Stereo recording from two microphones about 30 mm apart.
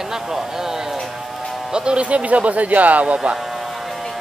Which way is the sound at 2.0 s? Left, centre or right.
Right.